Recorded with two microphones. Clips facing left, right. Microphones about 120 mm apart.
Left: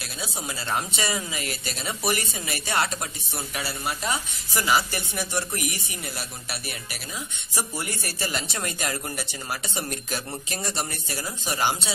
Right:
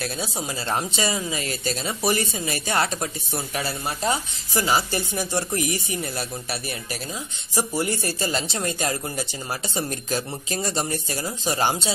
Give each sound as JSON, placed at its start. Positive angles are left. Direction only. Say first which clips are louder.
{"t": 0.2, "sound": "speech", "louder": "right 4 dB", "side_deg": -30}